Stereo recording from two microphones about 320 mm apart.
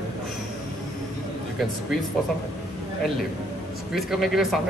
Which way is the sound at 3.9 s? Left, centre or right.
Centre.